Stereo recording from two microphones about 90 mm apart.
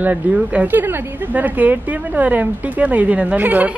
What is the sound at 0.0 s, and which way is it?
Speech, 15° right (ahead or behind).